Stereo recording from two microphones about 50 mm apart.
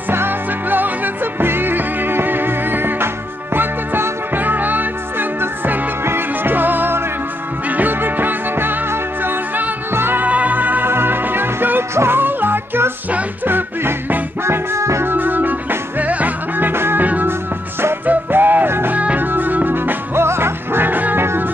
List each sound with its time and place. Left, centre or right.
0.1 s music: right
5.4 s music: right
10.2 s music: right
11.9 s music: right
12.2 s music: right
14.4 s music: right
15.0 s music: right
17.0 s music: right
19.1 s music: right
20.2 s music: right